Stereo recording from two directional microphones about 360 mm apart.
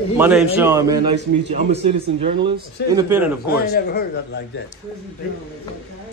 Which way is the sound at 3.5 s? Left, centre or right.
Left.